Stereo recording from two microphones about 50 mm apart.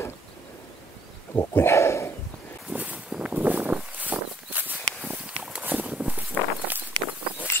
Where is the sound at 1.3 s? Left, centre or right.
Left.